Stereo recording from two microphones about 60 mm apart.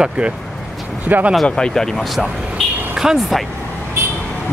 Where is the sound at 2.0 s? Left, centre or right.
Centre.